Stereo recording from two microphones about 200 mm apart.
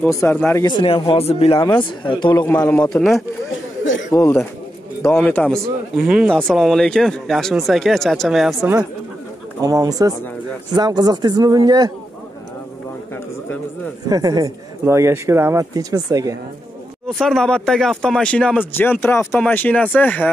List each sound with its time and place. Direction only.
0.0 s speech: 10° left (ahead or behind)
0.7 s speech: 25° left (ahead or behind)
2.4 s speech: 5° left (ahead or behind)
3.8 s chatter: 70° left (ahead or behind)
4.1 s speech: 15° left (ahead or behind)
9.6 s speech: 15° right (ahead or behind)
14.0 s speech: 20° right (ahead or behind)
17.1 s speech: centre (ahead or behind)